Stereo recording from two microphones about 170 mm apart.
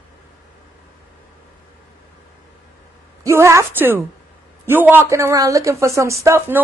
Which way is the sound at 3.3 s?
15° right (ahead or behind).